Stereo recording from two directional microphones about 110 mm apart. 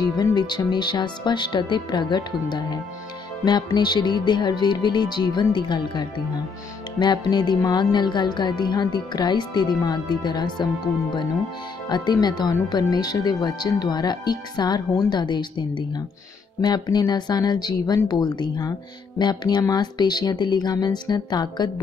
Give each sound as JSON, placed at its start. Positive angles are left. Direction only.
{"t": 0.2, "sound": "speech", "side_deg": 40}
{"t": 11.9, "sound": "speech", "side_deg": 40}